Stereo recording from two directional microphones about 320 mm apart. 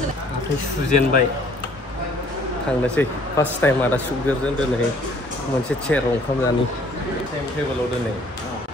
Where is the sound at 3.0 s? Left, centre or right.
Centre.